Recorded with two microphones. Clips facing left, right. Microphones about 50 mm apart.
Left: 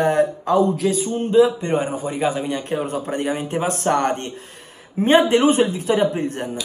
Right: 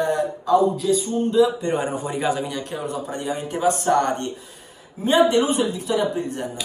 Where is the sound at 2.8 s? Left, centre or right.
Left.